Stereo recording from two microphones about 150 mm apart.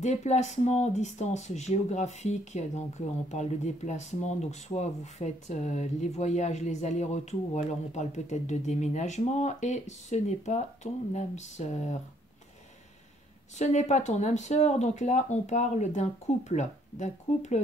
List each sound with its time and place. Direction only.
0.0 s speech: 50° left (ahead or behind)
13.6 s speech: 50° left (ahead or behind)